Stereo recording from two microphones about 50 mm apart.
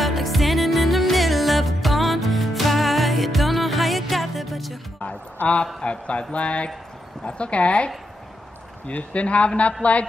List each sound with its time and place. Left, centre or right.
0.0 s music: centre
5.0 s a sound: left
5.8 s a man's voice: left